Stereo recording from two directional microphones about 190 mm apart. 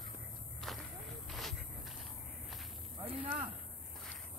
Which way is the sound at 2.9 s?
25° right (ahead or behind).